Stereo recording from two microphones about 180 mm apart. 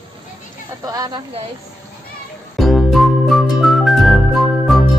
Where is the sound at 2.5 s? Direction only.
Centre (ahead or behind).